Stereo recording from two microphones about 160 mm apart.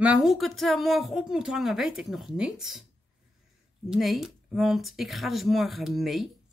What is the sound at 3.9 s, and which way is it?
A woman's voice, centre (ahead or behind).